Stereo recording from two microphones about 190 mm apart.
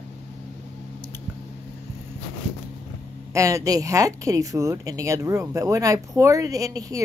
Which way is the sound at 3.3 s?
15° right (ahead or behind).